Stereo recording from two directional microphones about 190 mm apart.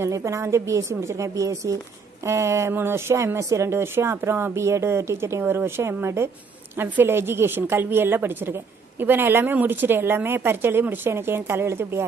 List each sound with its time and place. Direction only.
0.0 s a woman's voice: 15° right (ahead or behind)